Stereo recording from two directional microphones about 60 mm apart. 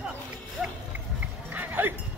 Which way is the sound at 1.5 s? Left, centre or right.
Right.